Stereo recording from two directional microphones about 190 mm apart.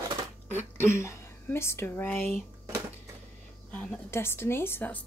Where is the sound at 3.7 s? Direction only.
10° left (ahead or behind).